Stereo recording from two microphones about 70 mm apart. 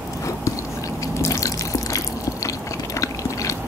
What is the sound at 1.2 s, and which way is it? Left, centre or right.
Drip, left.